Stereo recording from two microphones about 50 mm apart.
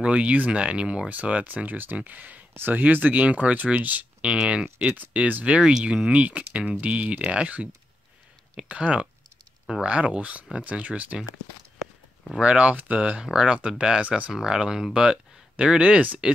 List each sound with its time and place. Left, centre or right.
0.0 s speech: right
4.2 s speech: centre
4.7 s speech: right
12.4 s speech: right
13.2 s speech: centre
14.0 s speech: right
14.3 s speech: centre